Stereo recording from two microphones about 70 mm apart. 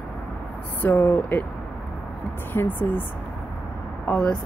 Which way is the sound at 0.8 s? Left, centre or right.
Left.